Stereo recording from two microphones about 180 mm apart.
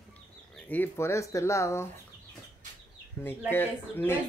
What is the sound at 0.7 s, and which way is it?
Speech, 10° left (ahead or behind).